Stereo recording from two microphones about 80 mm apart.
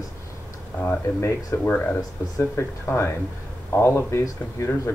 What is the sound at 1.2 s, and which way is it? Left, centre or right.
Speech, left.